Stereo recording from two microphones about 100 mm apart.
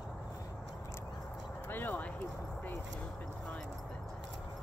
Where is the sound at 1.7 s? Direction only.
20° left (ahead or behind).